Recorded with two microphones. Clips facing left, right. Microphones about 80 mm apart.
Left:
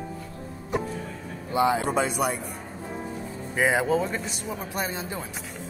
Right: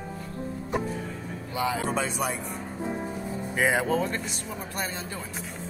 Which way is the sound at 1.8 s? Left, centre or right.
Centre.